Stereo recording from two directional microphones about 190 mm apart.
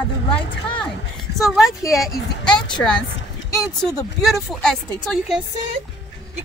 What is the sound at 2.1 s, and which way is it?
Speech, 25° left (ahead or behind).